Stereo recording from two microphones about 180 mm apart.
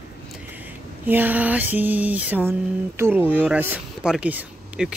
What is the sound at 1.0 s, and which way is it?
Speech, 10° right (ahead or behind).